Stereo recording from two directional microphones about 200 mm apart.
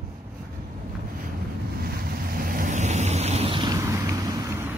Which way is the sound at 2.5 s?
40° right (ahead or behind).